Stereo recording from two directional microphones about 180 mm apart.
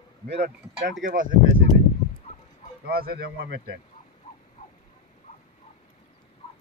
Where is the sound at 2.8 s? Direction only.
55° right (ahead or behind).